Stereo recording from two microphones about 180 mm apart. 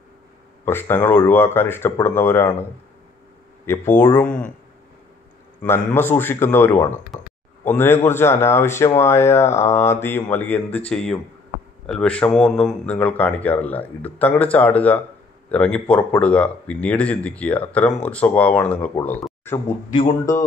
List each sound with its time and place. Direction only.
0.7 s speech: 10° left (ahead or behind)
3.9 s speech: 10° left (ahead or behind)
5.6 s speech: 10° left (ahead or behind)